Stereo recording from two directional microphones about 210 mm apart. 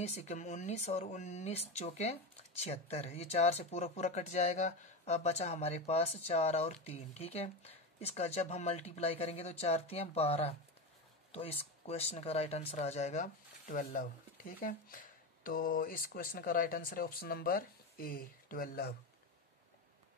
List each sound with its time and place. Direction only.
0.0 s speech: 30° left (ahead or behind)